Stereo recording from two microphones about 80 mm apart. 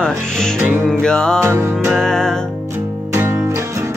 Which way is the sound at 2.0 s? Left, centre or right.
Centre.